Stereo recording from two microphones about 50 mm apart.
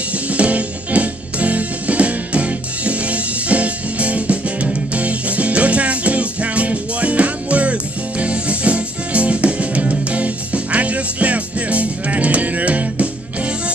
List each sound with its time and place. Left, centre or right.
0.3 s music: right